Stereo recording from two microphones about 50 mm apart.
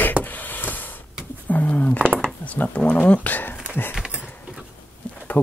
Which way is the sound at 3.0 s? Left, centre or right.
Left.